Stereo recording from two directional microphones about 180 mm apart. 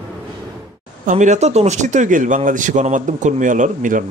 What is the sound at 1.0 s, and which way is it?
Speech, 40° right (ahead or behind).